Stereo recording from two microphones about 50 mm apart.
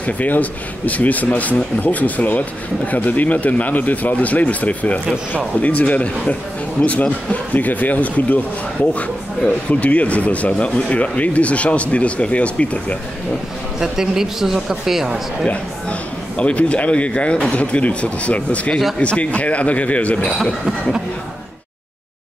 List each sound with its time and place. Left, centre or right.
0.0 s speech: left
9.7 s speech: left
13.7 s a man's voice: centre
15.4 s speech: left